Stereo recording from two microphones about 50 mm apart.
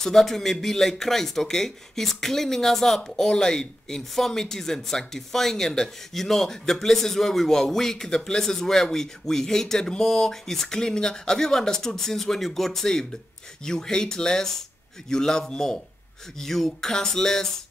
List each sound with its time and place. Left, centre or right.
0.0 s speech: centre